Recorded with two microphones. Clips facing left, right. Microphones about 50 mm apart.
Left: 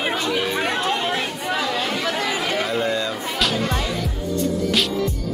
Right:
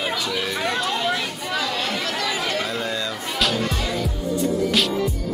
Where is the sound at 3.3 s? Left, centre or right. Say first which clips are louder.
Even; centre.